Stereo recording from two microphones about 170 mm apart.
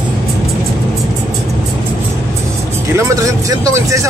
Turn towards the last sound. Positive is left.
turn(degrees=-20)  # may be behind; listen again after turning